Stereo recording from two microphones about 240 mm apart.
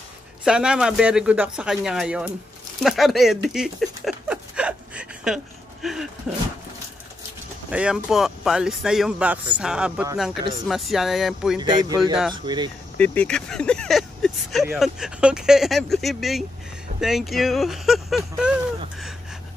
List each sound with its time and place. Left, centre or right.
0.4 s speech: centre
2.8 s a sound: centre
6.3 s speech: centre
7.7 s speech: centre
11.6 s speech: centre
12.9 s speech: centre